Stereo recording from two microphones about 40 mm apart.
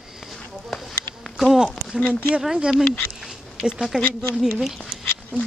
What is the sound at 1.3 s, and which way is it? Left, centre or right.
Insect, centre.